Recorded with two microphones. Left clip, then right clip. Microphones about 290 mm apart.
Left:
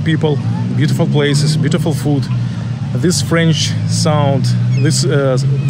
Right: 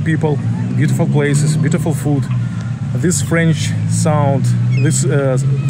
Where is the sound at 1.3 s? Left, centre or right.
Left.